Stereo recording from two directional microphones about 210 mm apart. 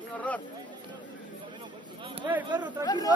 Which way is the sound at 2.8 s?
20° left (ahead or behind).